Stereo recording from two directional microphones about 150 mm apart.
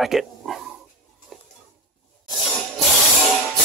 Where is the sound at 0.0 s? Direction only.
Centre (ahead or behind).